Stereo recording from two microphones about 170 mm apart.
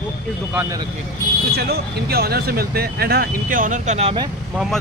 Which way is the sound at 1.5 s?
70° right (ahead or behind).